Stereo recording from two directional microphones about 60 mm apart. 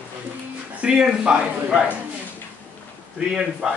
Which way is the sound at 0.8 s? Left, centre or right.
Centre.